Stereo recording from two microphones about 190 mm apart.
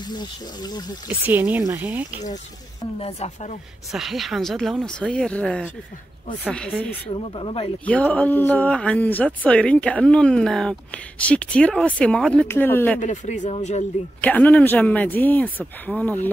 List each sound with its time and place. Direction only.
0.1 s speech: 20° left (ahead or behind)
1.0 s speech: 10° right (ahead or behind)
3.0 s speech: 35° left (ahead or behind)
3.9 s speech: centre (ahead or behind)
7.2 s speech: 30° left (ahead or behind)
7.8 s speech: 5° left (ahead or behind)
13.0 s speech: 40° left (ahead or behind)
14.2 s speech: 10° left (ahead or behind)